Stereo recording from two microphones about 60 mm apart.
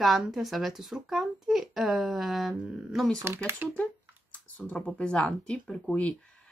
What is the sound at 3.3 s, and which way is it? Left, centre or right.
Speech, right.